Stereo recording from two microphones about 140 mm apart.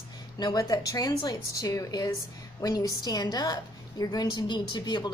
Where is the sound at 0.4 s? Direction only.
30° left (ahead or behind).